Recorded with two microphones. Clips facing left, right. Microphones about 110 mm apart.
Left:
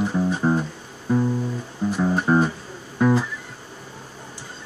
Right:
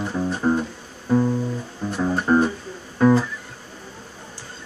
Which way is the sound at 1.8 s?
5° left (ahead or behind).